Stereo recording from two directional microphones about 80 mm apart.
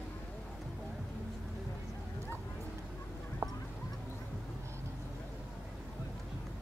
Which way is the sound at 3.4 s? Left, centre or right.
Right.